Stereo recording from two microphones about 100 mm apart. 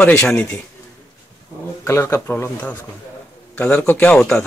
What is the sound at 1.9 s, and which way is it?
A man's voice, 25° left (ahead or behind).